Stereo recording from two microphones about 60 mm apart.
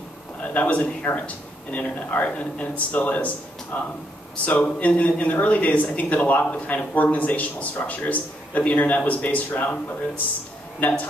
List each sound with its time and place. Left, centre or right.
0.4 s speech: left
10.8 s speech: left